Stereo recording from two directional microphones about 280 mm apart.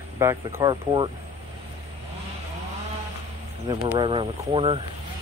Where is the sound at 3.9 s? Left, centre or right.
Centre.